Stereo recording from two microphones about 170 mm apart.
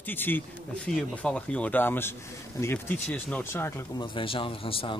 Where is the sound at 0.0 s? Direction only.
10° left (ahead or behind).